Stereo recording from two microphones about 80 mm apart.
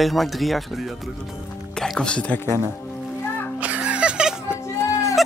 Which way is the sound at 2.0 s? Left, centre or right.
Centre.